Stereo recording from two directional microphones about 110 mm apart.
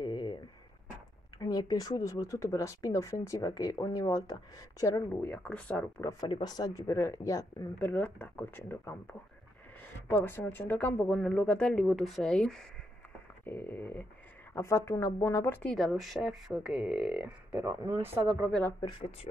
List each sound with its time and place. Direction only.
0.0 s a sound: 40° left (ahead or behind)
1.4 s speech: 35° left (ahead or behind)
5.2 s speech: 10° left (ahead or behind)
6.2 s speech: 40° left (ahead or behind)
7.8 s speech: 15° left (ahead or behind)
13.5 s speech: 20° left (ahead or behind)
15.6 s speech: 5° left (ahead or behind)
18.8 s speech: 45° left (ahead or behind)